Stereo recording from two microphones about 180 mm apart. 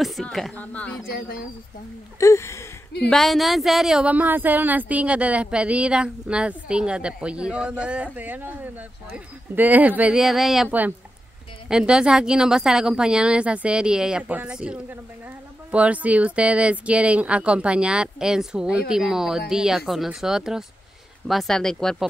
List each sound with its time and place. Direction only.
0.0 s speech: centre (ahead or behind)
1.0 s speech: 55° left (ahead or behind)
2.1 s speech: 15° left (ahead or behind)
3.1 s speech: centre (ahead or behind)